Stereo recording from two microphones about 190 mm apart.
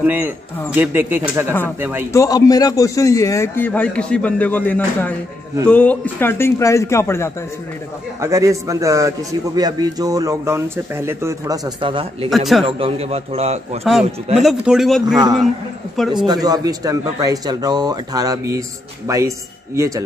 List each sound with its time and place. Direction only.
0.0 s a man's voice: 10° right (ahead or behind)
2.1 s a man's voice: 20° left (ahead or behind)
8.2 s a man's voice: 15° right (ahead or behind)
12.3 s speech: centre (ahead or behind)
12.6 s a man's voice: 30° right (ahead or behind)
14.4 s speech: centre (ahead or behind)
16.4 s a man's voice: 20° right (ahead or behind)